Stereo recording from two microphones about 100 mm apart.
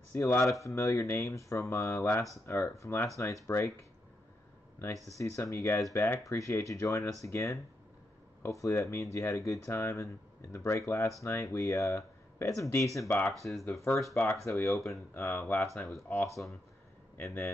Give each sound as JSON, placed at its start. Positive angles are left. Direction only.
{"t": 0.1, "sound": "speech", "side_deg": 25}
{"t": 5.1, "sound": "speech", "side_deg": 30}
{"t": 13.3, "sound": "speech", "side_deg": 0}
{"t": 14.3, "sound": "speech", "side_deg": 30}
{"t": 14.7, "sound": "speech", "side_deg": 0}
{"t": 15.2, "sound": "speech", "side_deg": 25}